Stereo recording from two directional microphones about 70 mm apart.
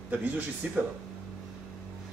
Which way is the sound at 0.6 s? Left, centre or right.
Right.